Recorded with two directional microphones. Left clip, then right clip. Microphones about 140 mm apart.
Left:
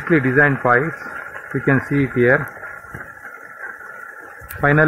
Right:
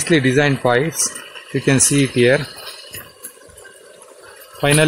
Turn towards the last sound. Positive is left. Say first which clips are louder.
# even
turn(degrees=-20)  # may be behind; listen again after turning